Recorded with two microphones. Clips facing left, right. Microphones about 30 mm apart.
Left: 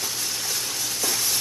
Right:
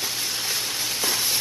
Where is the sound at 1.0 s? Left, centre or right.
Right.